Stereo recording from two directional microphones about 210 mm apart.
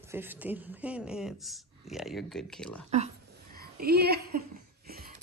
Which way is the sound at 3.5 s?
45° right (ahead or behind).